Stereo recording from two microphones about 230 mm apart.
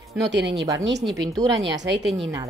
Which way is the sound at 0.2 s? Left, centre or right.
Right.